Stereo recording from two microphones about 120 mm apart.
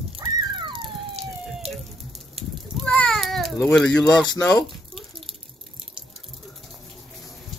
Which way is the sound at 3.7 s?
5° left (ahead or behind).